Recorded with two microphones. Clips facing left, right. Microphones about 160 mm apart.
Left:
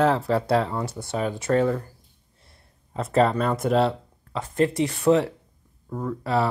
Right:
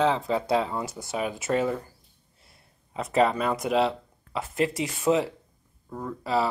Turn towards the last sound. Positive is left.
turn(degrees=0)  # may be behind; listen again after turning